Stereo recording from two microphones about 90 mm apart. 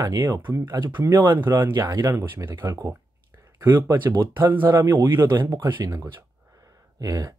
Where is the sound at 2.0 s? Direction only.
30° right (ahead or behind).